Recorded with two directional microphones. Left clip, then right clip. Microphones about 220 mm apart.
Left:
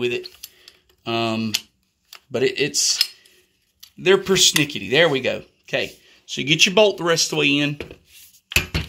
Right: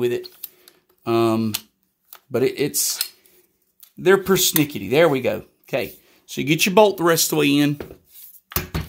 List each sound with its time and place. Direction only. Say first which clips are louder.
0.6 s typing: left 4 dB; 45° right (ahead or behind)
2.3 s speech: left 1 dB; 45° right (ahead or behind)
4.0 s speech: left 1 dB; 45° right (ahead or behind)